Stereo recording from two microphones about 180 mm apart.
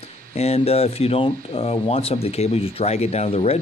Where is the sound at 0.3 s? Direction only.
35° left (ahead or behind).